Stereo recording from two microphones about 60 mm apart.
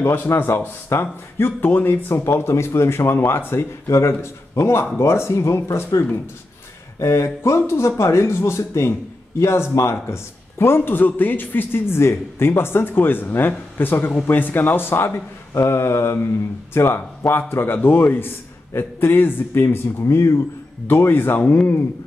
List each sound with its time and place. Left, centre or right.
0.0 s a man's voice: left
7.0 s a man's voice: left
21.0 s a man's voice: left